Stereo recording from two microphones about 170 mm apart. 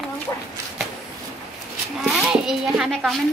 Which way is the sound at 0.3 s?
15° left (ahead or behind).